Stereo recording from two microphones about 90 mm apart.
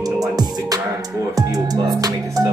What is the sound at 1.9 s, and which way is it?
Music, 45° right (ahead or behind).